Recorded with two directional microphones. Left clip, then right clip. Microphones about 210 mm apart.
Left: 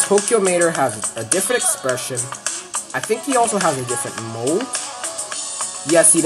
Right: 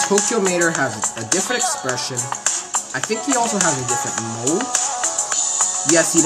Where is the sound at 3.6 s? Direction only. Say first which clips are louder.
Even; 20° right (ahead or behind).